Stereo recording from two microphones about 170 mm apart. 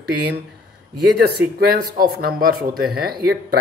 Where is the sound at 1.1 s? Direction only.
70° right (ahead or behind).